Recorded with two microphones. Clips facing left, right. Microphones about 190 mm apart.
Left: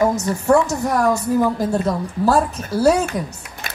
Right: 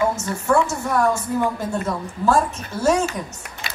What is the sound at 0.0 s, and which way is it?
Speech, 35° left (ahead or behind).